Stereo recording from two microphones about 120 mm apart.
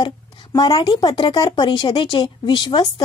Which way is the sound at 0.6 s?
40° left (ahead or behind).